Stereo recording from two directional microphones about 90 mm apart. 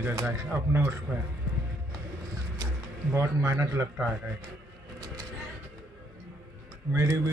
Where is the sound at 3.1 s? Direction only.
30° right (ahead or behind).